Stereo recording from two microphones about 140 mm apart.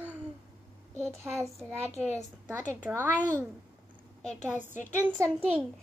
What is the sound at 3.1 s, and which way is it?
Speech, 15° left (ahead or behind).